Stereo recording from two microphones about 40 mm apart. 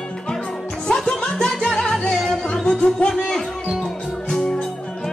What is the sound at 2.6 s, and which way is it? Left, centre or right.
Music, left.